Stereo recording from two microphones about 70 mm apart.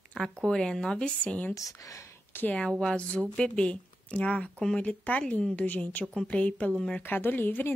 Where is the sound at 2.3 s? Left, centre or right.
Left.